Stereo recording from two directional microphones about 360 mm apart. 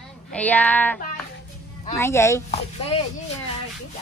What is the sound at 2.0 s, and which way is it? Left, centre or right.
Speech, centre.